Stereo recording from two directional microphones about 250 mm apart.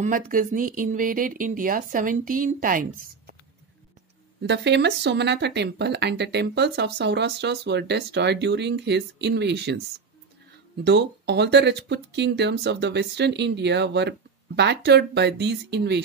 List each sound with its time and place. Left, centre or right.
0.0 s speech: right
4.4 s speech: right
10.8 s speech: right